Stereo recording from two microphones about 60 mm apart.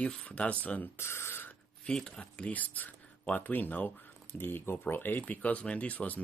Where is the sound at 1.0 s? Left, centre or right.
Left.